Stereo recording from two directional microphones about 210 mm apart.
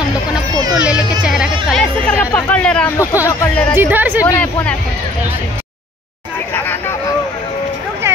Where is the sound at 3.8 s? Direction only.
10° right (ahead or behind).